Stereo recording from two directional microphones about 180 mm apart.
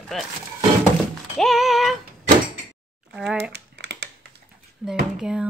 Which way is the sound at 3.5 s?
70° right (ahead or behind).